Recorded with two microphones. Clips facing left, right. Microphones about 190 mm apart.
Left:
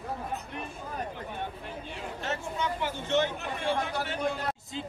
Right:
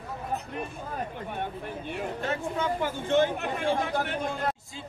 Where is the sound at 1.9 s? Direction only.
50° right (ahead or behind).